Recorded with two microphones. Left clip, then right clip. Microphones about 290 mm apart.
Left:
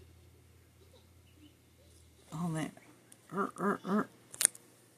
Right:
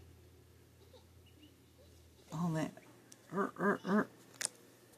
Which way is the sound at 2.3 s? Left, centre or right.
Centre.